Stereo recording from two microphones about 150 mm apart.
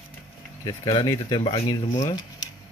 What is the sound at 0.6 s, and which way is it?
Speech, 25° left (ahead or behind).